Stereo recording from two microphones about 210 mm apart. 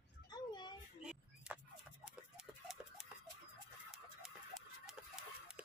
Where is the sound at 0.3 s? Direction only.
20° left (ahead or behind).